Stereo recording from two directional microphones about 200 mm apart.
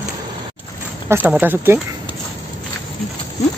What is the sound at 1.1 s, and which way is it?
Speech, 15° right (ahead or behind).